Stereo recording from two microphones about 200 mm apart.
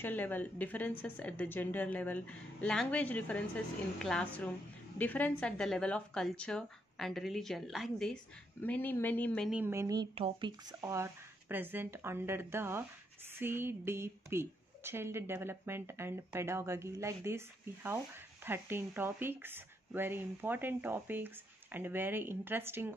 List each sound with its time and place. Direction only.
0.0 s a woman's voice: 10° left (ahead or behind)
9.5 s a woman's voice: 10° right (ahead or behind)
10.1 s a woman's voice: 25° right (ahead or behind)